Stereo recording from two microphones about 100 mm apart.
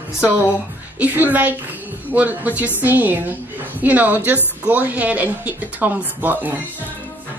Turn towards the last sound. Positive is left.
turn(degrees=-15)  # may be behind; listen again after turning